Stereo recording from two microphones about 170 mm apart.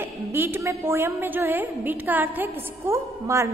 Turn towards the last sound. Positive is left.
turn(degrees=-15)  # may be behind; listen again after turning